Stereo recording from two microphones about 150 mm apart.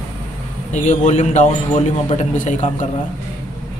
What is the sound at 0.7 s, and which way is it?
A man's voice, 50° left (ahead or behind).